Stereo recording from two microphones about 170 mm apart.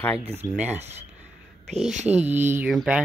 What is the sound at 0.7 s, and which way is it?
Speech, 40° right (ahead or behind).